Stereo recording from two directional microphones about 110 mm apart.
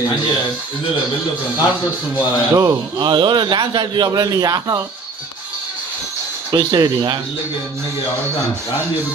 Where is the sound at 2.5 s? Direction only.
30° right (ahead or behind).